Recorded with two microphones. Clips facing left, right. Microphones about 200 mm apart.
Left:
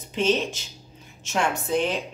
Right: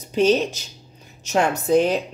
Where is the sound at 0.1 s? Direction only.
40° right (ahead or behind).